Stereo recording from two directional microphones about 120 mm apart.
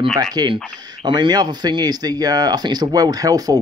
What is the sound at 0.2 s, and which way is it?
Speech, 35° right (ahead or behind).